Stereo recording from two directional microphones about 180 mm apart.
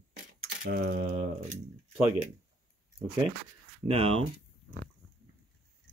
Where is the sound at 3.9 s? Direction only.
30° right (ahead or behind).